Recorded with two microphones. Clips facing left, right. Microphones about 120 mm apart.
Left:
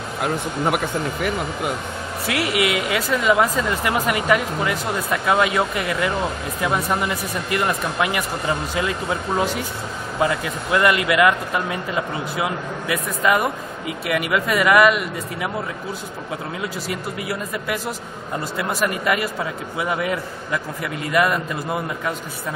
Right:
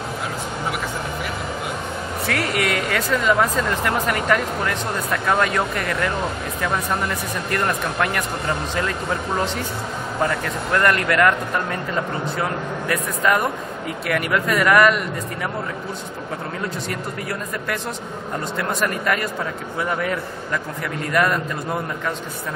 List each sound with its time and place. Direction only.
0.2 s speech: 55° left (ahead or behind)
2.2 s speech: 10° left (ahead or behind)
16.9 s a man's voice: 5° left (ahead or behind)